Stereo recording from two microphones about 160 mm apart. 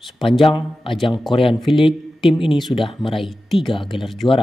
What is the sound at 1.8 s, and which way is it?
Speech, centre (ahead or behind).